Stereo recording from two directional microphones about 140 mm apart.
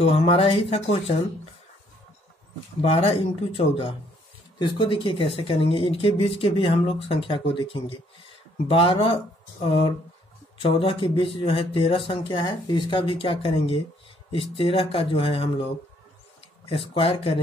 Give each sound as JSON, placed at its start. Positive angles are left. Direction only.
{"t": 0.0, "sound": "speech", "side_deg": 45}
{"t": 2.8, "sound": "speech", "side_deg": 40}
{"t": 16.6, "sound": "speech", "side_deg": 40}